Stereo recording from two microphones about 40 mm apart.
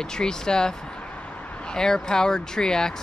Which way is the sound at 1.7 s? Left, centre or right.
Centre.